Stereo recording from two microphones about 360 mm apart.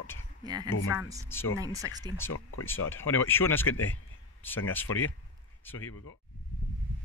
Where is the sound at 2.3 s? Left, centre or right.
Left.